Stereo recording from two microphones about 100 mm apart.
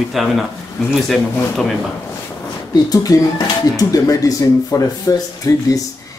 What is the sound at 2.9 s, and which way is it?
Speech, 35° left (ahead or behind).